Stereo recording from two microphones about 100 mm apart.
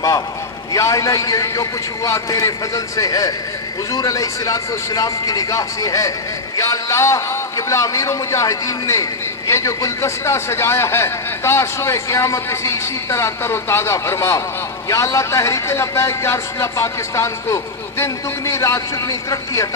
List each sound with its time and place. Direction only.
0.7 s a man's voice: 30° left (ahead or behind)